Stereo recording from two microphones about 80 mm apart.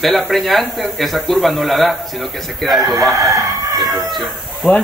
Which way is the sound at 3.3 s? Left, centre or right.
Right.